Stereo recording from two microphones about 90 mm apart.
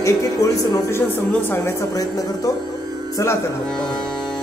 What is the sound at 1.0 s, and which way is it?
Speech, 25° left (ahead or behind).